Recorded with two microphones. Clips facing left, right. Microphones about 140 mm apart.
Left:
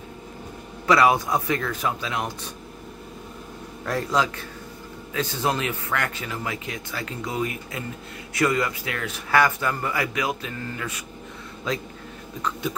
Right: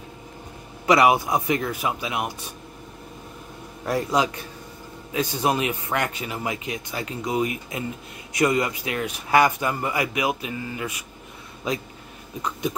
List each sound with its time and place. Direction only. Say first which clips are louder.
0.8 s speech: right 1 dB; 15° right (ahead or behind)
3.8 s speech: right 1 dB; 15° right (ahead or behind)